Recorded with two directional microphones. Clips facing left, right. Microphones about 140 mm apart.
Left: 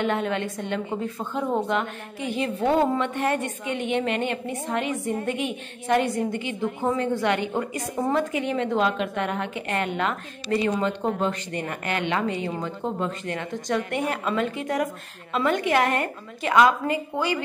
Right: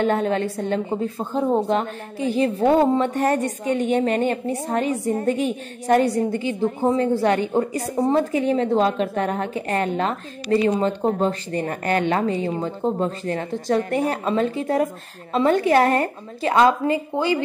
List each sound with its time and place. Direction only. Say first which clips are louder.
0.0 s a woman's voice: right 5 dB; 35° right (ahead or behind)